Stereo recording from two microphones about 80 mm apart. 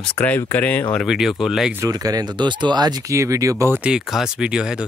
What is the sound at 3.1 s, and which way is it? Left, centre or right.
Speech, right.